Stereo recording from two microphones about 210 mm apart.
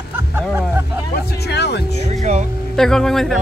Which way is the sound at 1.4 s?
50° left (ahead or behind).